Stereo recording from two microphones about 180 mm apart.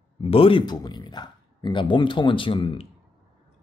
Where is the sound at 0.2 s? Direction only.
30° left (ahead or behind).